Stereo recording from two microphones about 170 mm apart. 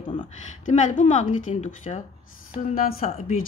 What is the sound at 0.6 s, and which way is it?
A woman's voice, 45° left (ahead or behind).